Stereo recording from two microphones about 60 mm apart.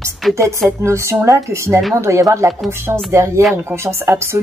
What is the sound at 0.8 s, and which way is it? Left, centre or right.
Speech, right.